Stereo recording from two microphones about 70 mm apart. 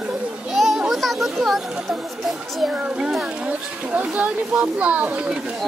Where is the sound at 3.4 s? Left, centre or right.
Right.